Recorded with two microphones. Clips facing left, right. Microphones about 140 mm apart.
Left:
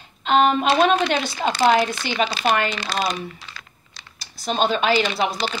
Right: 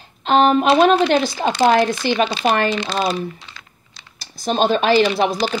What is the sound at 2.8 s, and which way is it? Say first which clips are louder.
Typing: right 4 dB; 25° right (ahead or behind).